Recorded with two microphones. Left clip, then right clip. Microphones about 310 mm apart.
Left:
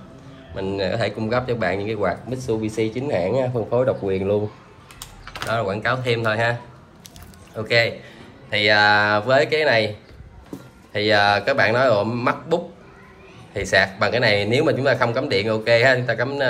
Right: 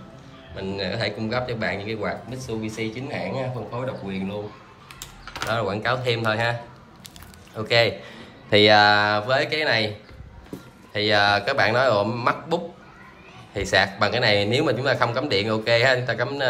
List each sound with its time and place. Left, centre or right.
0.6 s speech: centre
5.2 s typing: centre
5.5 s speech: centre